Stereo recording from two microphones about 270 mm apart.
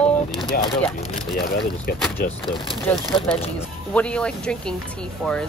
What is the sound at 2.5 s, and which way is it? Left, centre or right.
Speech, centre.